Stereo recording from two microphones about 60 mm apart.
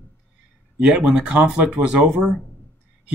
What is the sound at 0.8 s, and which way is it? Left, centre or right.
Speech, centre.